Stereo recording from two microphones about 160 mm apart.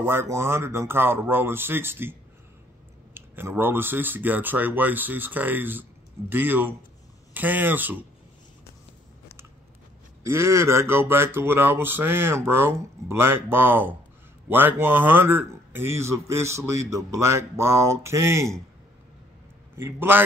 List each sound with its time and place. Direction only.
0.0 s a man's voice: 15° right (ahead or behind)
3.2 s a man's voice: 15° right (ahead or behind)
10.2 s a man's voice: 20° right (ahead or behind)
19.8 s a man's voice: 15° right (ahead or behind)